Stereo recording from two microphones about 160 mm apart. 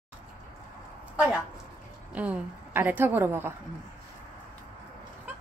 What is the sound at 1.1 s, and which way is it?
A woman's voice, 5° right (ahead or behind).